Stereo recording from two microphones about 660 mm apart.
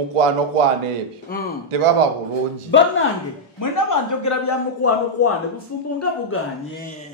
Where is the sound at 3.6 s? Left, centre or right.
Left.